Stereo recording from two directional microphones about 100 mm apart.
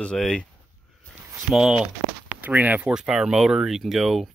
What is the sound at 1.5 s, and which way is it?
Speech, 5° right (ahead or behind).